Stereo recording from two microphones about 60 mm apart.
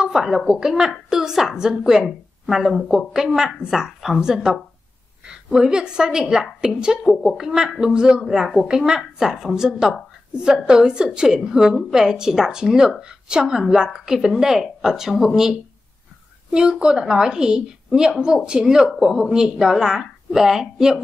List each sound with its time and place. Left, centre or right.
0.0 s a woman's voice: centre
8.2 s a woman's voice: centre
16.5 s a woman's voice: centre